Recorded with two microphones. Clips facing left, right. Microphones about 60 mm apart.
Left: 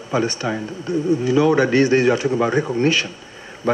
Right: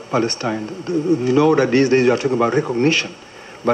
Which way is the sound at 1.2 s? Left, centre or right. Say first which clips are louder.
Right 1 dB; right.